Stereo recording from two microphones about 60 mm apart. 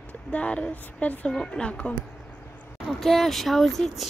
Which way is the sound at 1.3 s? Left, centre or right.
Centre.